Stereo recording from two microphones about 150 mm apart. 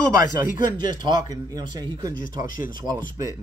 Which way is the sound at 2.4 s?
65° left (ahead or behind).